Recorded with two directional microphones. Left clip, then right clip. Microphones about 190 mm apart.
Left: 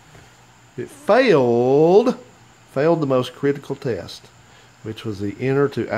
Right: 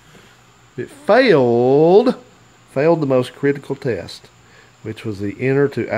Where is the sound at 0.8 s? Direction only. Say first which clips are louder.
Right 3 dB; 15° right (ahead or behind).